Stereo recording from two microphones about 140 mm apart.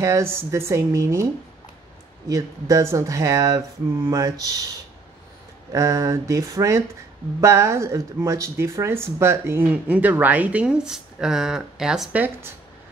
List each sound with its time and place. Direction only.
0.0 s speech: 20° right (ahead or behind)
2.2 s speech: 25° right (ahead or behind)
5.7 s speech: 20° right (ahead or behind)